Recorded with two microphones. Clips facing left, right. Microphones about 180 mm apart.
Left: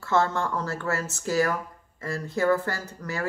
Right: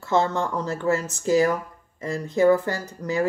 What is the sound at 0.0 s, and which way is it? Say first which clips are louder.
Speech: right 2 dB; 15° right (ahead or behind).